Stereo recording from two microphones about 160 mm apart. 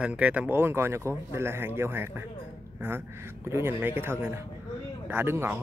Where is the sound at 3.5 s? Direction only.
15° right (ahead or behind).